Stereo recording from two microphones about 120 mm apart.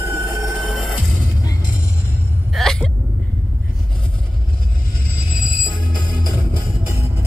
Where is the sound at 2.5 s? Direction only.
5° left (ahead or behind).